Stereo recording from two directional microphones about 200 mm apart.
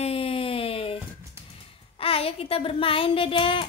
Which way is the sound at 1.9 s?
30° left (ahead or behind).